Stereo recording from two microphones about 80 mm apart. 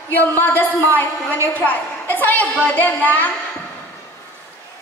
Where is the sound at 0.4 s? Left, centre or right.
Left.